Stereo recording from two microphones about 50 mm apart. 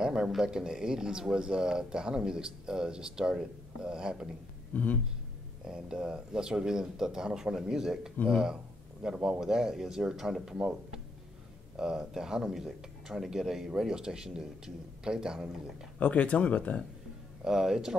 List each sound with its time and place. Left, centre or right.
0.0 s a man's voice: centre
4.7 s speech: left
5.7 s speech: centre
16.0 s speech: left
17.5 s speech: centre